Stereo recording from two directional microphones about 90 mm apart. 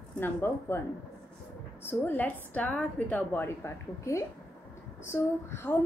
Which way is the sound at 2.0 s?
20° left (ahead or behind).